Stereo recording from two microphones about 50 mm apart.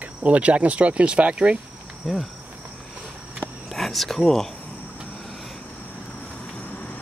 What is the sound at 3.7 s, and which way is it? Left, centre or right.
Speech, centre.